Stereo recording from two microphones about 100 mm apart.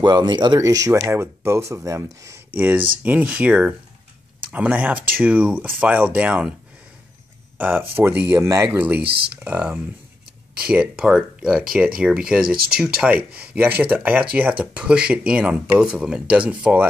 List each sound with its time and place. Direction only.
0.0 s speech: 45° right (ahead or behind)
0.6 s speech: 35° right (ahead or behind)
2.5 s speech: 15° right (ahead or behind)
7.5 s speech: 20° right (ahead or behind)
8.7 s speech: 15° right (ahead or behind)